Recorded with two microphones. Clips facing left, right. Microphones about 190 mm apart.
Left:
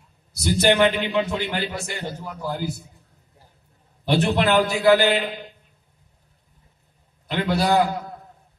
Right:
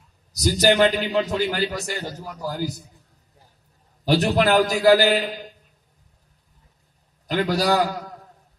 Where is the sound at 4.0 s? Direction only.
40° right (ahead or behind).